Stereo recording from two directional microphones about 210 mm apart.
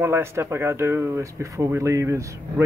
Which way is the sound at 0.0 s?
10° right (ahead or behind).